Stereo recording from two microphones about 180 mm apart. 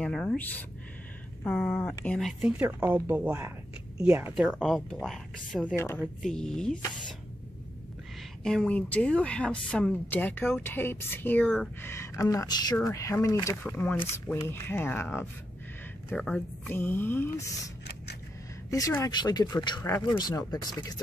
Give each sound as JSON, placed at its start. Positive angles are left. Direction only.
{"t": 0.0, "sound": "a woman's voice", "side_deg": 5}
{"t": 5.8, "sound": "speech", "side_deg": 15}
{"t": 6.2, "sound": "a woman's voice", "side_deg": 5}
{"t": 8.5, "sound": "speech", "side_deg": 5}
{"t": 18.7, "sound": "speech", "side_deg": 20}